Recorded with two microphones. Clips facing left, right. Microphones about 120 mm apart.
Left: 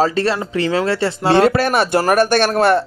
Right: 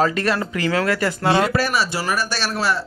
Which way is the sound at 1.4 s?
55° left (ahead or behind).